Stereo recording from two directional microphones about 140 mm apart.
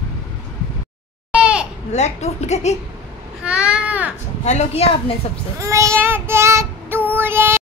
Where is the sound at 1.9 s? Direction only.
55° left (ahead or behind).